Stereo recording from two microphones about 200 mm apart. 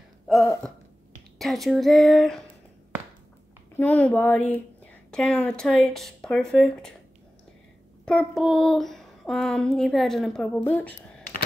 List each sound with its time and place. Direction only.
1.4 s child singing: centre (ahead or behind)
3.7 s speech: 5° left (ahead or behind)
5.1 s child singing: 5° left (ahead or behind)
8.0 s child singing: 5° left (ahead or behind)
10.6 s speech: 10° left (ahead or behind)